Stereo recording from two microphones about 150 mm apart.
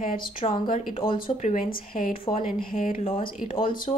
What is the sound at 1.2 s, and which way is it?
Speech, 55° left (ahead or behind).